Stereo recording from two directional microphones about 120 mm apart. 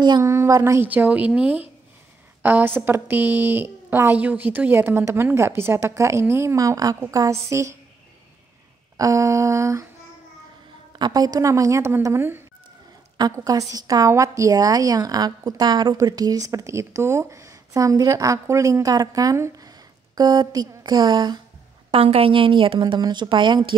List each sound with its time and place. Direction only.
0.2 s a woman's voice: 25° right (ahead or behind)
0.8 s a woman's voice: 15° right (ahead or behind)
8.9 s a woman's voice: 30° right (ahead or behind)
11.0 s a woman's voice: 35° right (ahead or behind)
21.9 s a woman's voice: 55° right (ahead or behind); by 23.7 s 40° right (ahead or behind)